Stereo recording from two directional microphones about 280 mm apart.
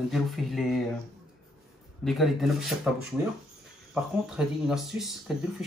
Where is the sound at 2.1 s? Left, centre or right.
Centre.